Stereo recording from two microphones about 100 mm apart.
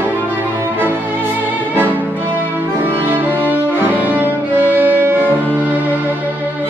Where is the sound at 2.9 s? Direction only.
20° right (ahead or behind).